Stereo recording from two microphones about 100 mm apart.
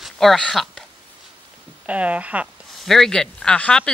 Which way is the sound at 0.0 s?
Centre (ahead or behind).